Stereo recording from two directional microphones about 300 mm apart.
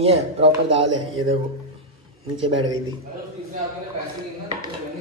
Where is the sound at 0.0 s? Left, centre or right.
Centre.